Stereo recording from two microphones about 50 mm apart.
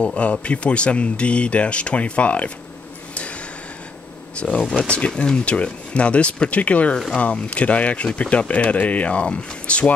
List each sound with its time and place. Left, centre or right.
0.0 s speech: left
4.4 s speech: left